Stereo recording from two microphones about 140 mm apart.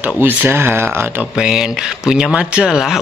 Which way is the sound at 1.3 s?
5° right (ahead or behind).